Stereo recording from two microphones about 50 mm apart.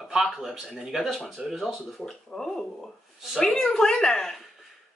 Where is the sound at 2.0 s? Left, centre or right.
Centre.